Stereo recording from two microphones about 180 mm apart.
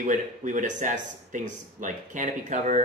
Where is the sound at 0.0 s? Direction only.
45° right (ahead or behind).